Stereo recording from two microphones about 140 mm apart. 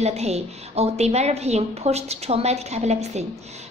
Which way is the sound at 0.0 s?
50° right (ahead or behind).